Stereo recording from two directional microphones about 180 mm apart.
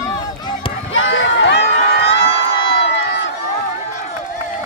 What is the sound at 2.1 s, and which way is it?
Crowd, 80° left.